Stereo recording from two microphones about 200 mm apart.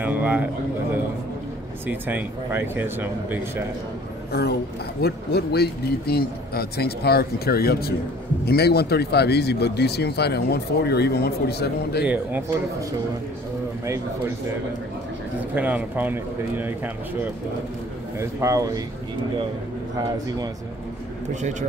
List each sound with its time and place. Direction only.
0.0 s a sound: 10° right (ahead or behind)
1.9 s speech: 10° right (ahead or behind)
4.3 s speech: 50° left (ahead or behind)
12.0 s speech: 10° right (ahead or behind)
13.8 s speech: 15° right (ahead or behind)
15.5 s speech: 10° right (ahead or behind)
20.0 s speech: 20° right (ahead or behind)
21.4 s speech: 35° right (ahead or behind)